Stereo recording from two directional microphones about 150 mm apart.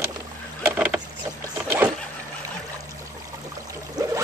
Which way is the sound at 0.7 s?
10° right (ahead or behind).